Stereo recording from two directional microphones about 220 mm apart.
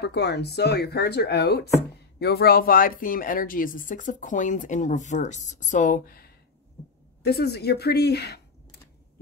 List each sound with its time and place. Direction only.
0.0 s speech: 50° left (ahead or behind)